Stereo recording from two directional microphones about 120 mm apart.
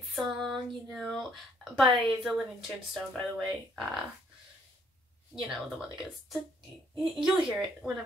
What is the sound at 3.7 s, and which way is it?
Speech, centre (ahead or behind).